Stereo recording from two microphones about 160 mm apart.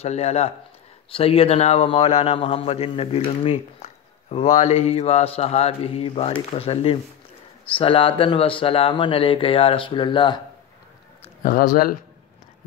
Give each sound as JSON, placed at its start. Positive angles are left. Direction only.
{"t": 0.0, "sound": "speech", "side_deg": 40}
{"t": 11.4, "sound": "speech", "side_deg": 60}